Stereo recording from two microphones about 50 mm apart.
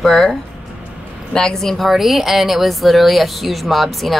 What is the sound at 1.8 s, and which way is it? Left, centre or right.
Speech, centre.